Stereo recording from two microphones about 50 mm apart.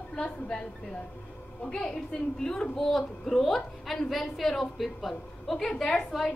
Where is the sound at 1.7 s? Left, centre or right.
Centre.